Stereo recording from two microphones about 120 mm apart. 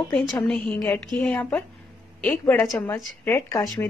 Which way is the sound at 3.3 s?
30° left (ahead or behind).